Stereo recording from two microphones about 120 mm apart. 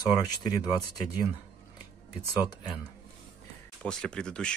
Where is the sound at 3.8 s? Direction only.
5° left (ahead or behind).